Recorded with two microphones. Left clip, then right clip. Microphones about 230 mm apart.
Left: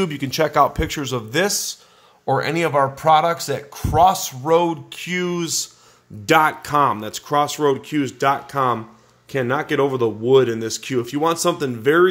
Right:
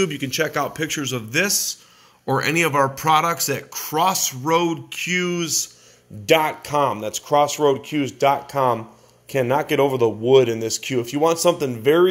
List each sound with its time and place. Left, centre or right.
0.0 s speech: left
2.2 s speech: centre